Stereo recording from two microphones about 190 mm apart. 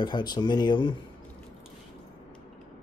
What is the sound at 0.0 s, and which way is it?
Speech, 20° left (ahead or behind).